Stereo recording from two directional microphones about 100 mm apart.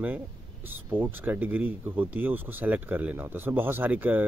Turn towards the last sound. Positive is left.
turn(degrees=-15)  # may be behind; listen again after turning